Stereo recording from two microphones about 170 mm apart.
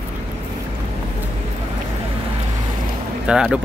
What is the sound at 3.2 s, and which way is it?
Speech, 5° right (ahead or behind).